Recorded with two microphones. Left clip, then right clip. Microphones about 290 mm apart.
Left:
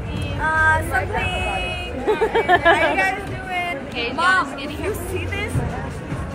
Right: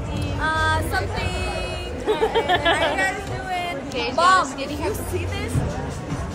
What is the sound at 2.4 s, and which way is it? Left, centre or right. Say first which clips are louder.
Speech: left 6 dB; left.